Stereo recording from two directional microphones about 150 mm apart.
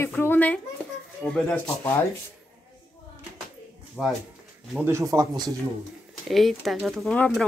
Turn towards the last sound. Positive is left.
turn(degrees=5)  # may be behind; listen again after turning